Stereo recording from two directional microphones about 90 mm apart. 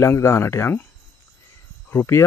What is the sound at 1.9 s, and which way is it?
Speech, 30° left (ahead or behind).